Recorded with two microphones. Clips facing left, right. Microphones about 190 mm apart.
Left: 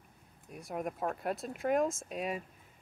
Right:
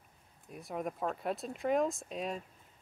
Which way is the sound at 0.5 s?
Centre (ahead or behind).